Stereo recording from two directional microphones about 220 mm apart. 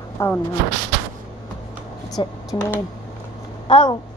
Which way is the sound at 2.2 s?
15° left (ahead or behind).